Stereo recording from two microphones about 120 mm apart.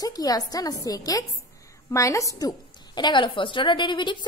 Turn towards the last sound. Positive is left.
turn(degrees=40)  # may be behind; listen again after turning